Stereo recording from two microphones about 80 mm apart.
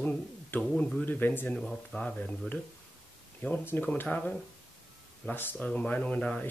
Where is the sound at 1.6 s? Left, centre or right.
Centre.